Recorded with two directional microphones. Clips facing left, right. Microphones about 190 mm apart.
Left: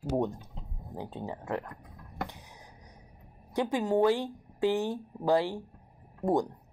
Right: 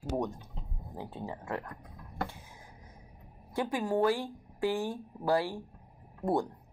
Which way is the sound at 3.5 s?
20° left (ahead or behind).